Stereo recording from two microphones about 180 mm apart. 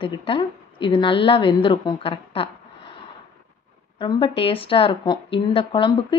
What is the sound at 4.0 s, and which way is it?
A woman's voice, 25° left (ahead or behind).